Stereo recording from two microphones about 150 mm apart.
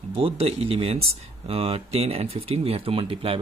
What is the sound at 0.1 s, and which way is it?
Speech, 40° right (ahead or behind).